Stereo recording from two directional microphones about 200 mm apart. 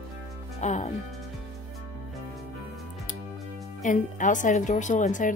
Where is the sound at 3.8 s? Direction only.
40° left (ahead or behind).